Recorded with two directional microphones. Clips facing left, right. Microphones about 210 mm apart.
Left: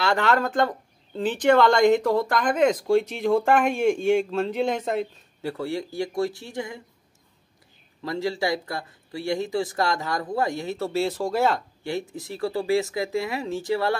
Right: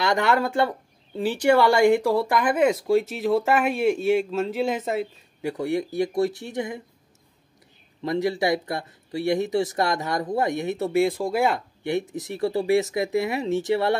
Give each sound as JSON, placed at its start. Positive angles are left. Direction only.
{"t": 0.0, "sound": "speech", "side_deg": -15}
{"t": 8.0, "sound": "speech", "side_deg": -20}